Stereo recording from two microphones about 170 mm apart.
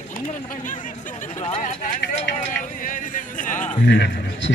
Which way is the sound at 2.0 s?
90° left.